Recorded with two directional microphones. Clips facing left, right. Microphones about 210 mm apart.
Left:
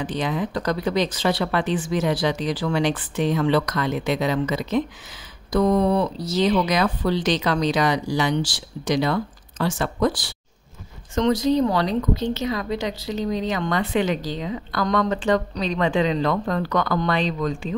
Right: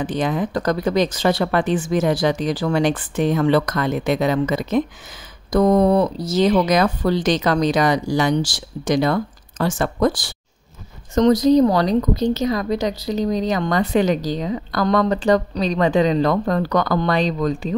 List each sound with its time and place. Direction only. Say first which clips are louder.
0.0 s a woman's voice: right 4 dB; 50° right (ahead or behind)